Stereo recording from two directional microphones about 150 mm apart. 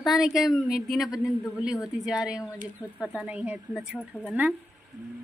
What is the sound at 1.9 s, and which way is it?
A woman's voice, 5° right (ahead or behind).